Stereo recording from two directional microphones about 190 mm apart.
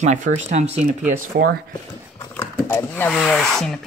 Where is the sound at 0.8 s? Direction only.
50° right (ahead or behind).